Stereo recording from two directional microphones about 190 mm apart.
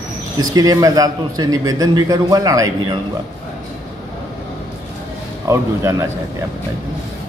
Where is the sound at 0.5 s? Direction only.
20° right (ahead or behind).